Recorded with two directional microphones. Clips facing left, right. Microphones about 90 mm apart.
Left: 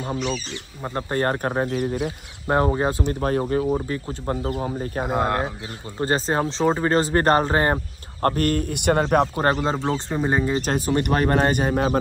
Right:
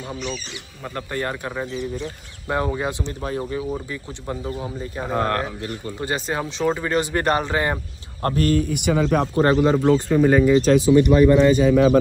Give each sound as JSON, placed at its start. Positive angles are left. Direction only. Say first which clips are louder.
{"t": 1.1, "sound": "speech", "louder": "left 5 dB", "side_deg": 40}
{"t": 1.7, "sound": "speech", "louder": "left 4 dB", "side_deg": 60}
{"t": 2.4, "sound": "speech", "louder": "left 3 dB", "side_deg": 35}
{"t": 5.0, "sound": "speech", "louder": "right 1 dB", "side_deg": 15}
{"t": 5.9, "sound": "speech", "louder": "left 5 dB", "side_deg": 35}
{"t": 9.4, "sound": "speech", "louder": "right 5 dB", "side_deg": 30}
{"t": 10.6, "sound": "speech", "louder": "right 8 dB", "side_deg": 45}